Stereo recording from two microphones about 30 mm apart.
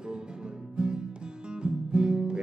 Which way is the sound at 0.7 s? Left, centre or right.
Right.